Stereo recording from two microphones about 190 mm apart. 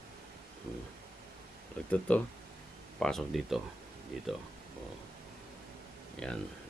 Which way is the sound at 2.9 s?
Centre (ahead or behind).